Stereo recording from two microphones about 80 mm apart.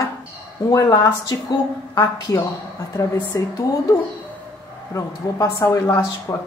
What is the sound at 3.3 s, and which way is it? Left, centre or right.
Speech, left.